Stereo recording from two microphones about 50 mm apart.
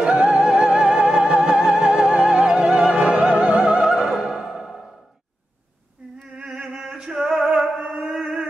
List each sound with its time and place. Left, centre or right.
0.0 s music: centre
3.8 s opera: centre
6.3 s music: centre
8.1 s a sound: centre